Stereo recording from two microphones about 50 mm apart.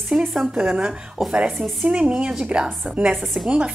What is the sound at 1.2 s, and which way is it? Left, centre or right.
A woman's voice, centre.